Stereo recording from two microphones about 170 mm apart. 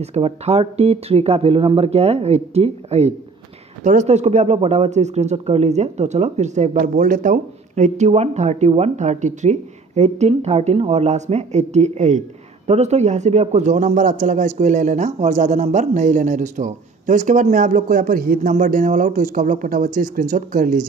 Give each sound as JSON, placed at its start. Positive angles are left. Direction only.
{"t": 0.0, "sound": "a man's voice", "side_deg": -40}